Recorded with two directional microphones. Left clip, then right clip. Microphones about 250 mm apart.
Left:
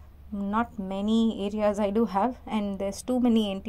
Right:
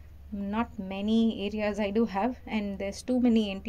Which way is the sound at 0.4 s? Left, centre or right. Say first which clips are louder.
Left 4 dB; centre.